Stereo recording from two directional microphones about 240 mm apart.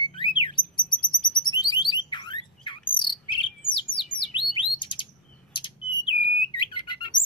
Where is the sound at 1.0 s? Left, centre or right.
Centre.